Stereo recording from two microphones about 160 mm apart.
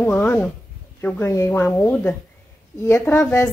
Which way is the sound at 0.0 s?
10° left (ahead or behind).